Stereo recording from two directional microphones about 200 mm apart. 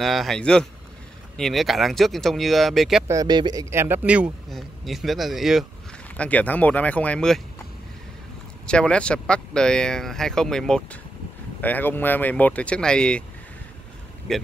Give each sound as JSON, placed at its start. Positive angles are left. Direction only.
{"t": 0.0, "sound": "speech", "side_deg": 0}
{"t": 3.1, "sound": "speech", "side_deg": -20}
{"t": 8.6, "sound": "speech", "side_deg": 5}
{"t": 14.3, "sound": "speech", "side_deg": 0}